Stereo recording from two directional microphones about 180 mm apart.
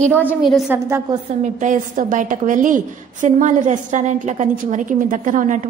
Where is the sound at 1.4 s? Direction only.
45° right (ahead or behind).